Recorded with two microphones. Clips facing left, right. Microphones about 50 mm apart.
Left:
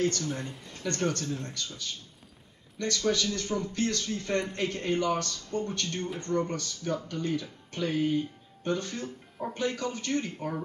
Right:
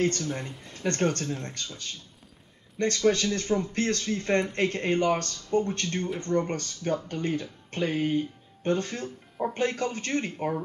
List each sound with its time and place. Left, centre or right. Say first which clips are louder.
0.2 s speech: right 1 dB; centre
0.8 s a man's voice: right 3 dB; right